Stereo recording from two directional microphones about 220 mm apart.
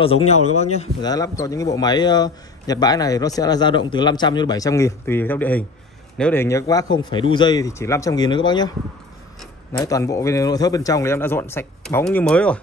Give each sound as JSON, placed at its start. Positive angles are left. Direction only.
{"t": 0.0, "sound": "a man's voice", "side_deg": 30}
{"t": 1.0, "sound": "a man's voice", "side_deg": 15}
{"t": 9.8, "sound": "a man's voice", "side_deg": 15}